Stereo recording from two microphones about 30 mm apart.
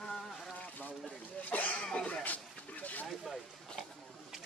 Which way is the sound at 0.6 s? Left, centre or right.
Left.